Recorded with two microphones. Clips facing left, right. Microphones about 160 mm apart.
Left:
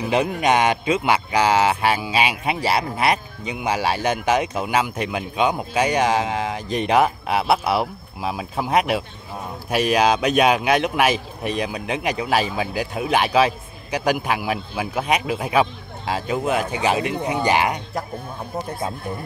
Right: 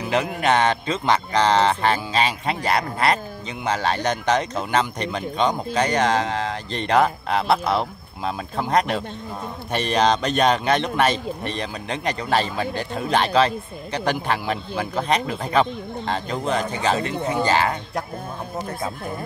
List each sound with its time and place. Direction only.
0.1 s speech: 15° left (ahead or behind)